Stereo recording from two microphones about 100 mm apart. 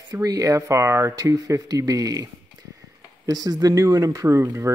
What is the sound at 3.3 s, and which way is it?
Speech, 40° right (ahead or behind).